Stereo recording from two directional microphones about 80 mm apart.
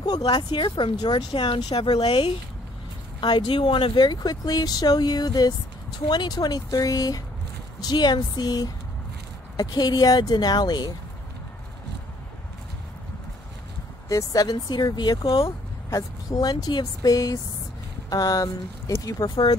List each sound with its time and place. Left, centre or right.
0.0 s speech: left
3.2 s speech: left
7.8 s speech: left
14.0 s speech: left
15.9 s speech: left